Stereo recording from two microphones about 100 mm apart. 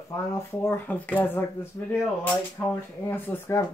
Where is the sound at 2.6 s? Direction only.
15° left (ahead or behind).